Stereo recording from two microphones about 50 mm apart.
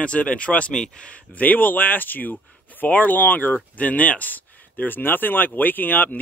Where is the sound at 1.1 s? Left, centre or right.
Left.